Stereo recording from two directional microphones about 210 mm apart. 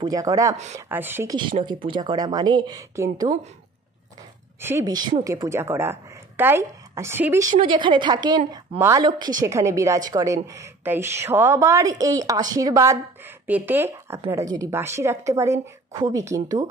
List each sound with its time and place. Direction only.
0.0 s a woman's voice: 15° right (ahead or behind)
4.6 s a woman's voice: 10° right (ahead or behind)
7.6 s a woman's voice: 25° right (ahead or behind)